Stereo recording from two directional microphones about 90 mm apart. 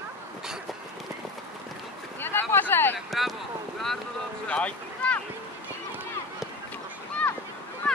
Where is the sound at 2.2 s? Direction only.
25° left (ahead or behind).